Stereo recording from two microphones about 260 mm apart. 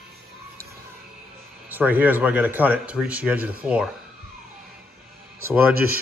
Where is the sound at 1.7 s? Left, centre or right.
Centre.